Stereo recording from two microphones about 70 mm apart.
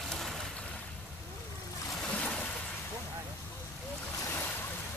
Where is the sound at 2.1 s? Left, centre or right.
Centre.